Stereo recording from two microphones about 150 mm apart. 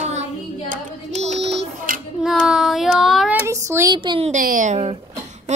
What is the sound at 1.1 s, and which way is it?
Child singing, 45° right (ahead or behind).